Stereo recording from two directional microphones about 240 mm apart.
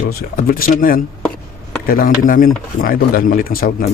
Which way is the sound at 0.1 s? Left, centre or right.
Left.